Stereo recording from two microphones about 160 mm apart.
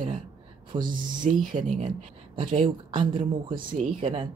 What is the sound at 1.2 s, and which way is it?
Speech, 55° right (ahead or behind).